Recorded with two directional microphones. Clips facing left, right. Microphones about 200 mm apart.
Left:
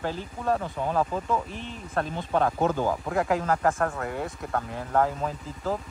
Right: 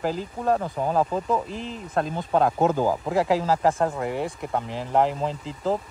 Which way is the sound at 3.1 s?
30° right (ahead or behind).